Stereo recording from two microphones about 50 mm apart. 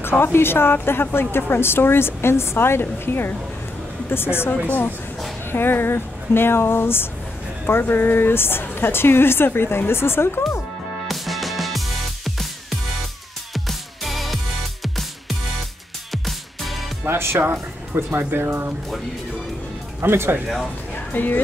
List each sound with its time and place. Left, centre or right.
0.1 s a woman's voice: left
4.6 s a woman's voice: left
5.5 s a woman's voice: left
11.1 s music: centre
13.5 s music: centre
17.0 s speech: right
20.0 s speech: right
20.9 s music: left